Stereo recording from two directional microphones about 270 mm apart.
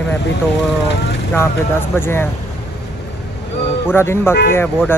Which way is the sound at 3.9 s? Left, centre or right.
Centre.